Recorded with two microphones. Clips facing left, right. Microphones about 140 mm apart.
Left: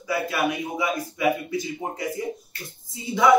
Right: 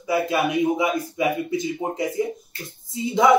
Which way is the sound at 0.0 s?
25° right (ahead or behind).